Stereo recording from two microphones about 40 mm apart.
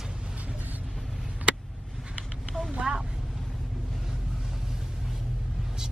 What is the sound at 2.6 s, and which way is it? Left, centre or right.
Vehicle, centre.